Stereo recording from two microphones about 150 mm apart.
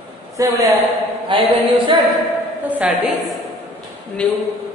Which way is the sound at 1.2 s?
35° right (ahead or behind).